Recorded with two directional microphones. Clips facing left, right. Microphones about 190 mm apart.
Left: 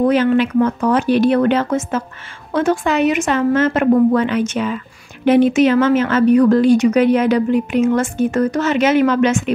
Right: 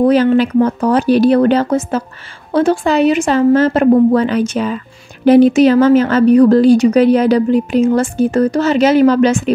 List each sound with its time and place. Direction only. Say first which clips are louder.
0.0 s a woman's voice: right 3 dB; 35° right (ahead or behind)